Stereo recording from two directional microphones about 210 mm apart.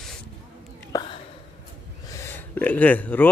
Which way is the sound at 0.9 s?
20° left (ahead or behind).